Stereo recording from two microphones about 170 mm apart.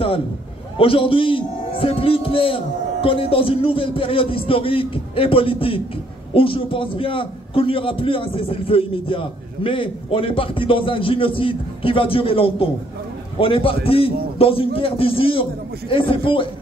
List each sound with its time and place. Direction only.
0.7 s a man's voice: 30° left (ahead or behind)